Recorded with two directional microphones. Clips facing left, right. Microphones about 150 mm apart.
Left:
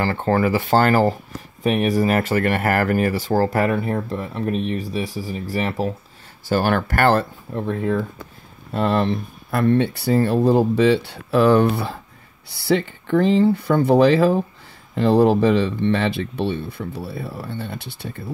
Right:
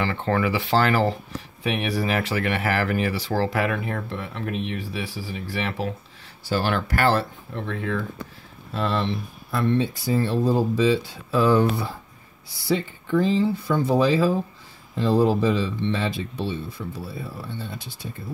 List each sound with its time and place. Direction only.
0.0 s speech: 40° left (ahead or behind)
6.4 s speech: 50° left (ahead or behind); by 18.2 s 65° left (ahead or behind)